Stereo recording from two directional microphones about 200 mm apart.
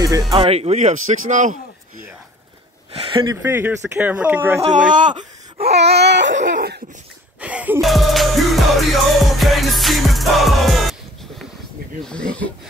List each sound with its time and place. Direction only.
0.3 s speech: 25° right (ahead or behind)
3.0 s speech: 25° right (ahead or behind)
3.4 s speech: 10° right (ahead or behind)
4.9 s a sound: 25° right (ahead or behind)
5.8 s baby cry: 55° right (ahead or behind)
7.3 s music: 5° right (ahead or behind)
12.0 s speech: 5° left (ahead or behind)